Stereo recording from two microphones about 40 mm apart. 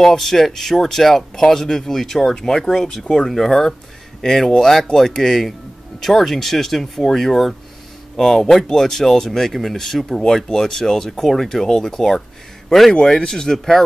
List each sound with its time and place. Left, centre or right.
0.0 s speech: centre
13.0 s speech: centre